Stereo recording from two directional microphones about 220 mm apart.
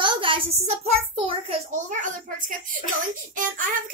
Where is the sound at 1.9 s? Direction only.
35° right (ahead or behind).